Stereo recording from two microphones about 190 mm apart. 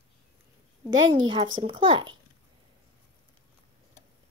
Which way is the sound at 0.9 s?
25° right (ahead or behind).